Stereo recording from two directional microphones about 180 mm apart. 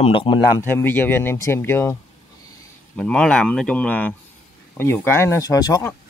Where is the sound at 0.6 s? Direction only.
15° left (ahead or behind).